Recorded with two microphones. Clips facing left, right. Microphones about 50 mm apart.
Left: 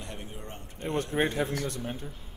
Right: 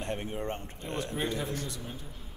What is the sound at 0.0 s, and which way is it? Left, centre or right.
Speech, right.